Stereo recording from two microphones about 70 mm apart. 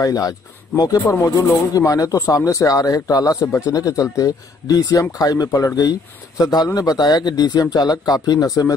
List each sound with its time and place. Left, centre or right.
0.0 s speech: left